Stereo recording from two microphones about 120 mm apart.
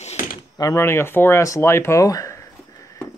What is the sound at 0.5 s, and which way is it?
Speech, 30° left (ahead or behind).